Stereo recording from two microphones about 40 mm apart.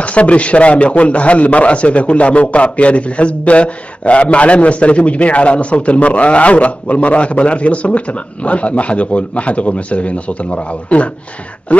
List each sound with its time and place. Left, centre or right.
0.0 s a man's voice: left